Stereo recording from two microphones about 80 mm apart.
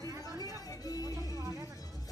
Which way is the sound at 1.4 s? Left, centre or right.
Right.